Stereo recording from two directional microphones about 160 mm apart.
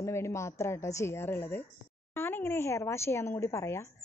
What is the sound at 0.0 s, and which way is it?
A woman's voice, 15° left (ahead or behind).